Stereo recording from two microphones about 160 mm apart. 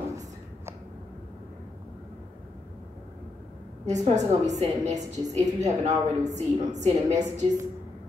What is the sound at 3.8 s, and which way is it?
A woman's voice, 45° right (ahead or behind).